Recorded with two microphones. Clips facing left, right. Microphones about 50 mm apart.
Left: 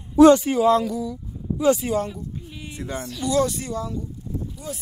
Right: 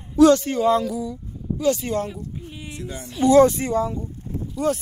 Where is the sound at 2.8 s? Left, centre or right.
Left.